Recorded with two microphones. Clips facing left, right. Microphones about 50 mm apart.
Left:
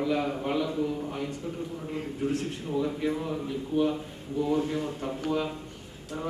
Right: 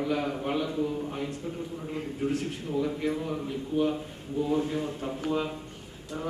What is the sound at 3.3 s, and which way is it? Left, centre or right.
A man's voice, centre.